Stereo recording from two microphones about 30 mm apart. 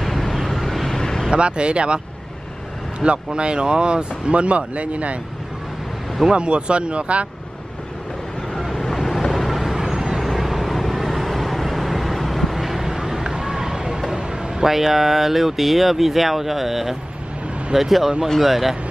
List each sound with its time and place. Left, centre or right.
0.0 s vehicle: centre
0.9 s vehicle: centre
1.3 s speech: right
3.0 s speech: right
4.3 s speech: right
6.3 s speech: right
8.5 s vehicle: centre
9.5 s vehicle: centre
10.2 s vehicle: centre
14.1 s a sound: right
14.7 s speech: centre